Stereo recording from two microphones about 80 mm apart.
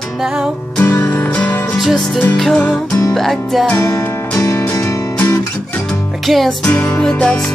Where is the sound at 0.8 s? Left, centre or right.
Left.